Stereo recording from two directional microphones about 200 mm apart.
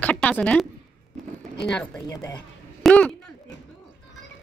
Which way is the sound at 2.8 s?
5° left (ahead or behind).